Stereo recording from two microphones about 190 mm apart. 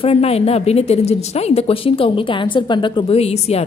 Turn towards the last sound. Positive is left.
turn(degrees=35)  # may be behind; listen again after turning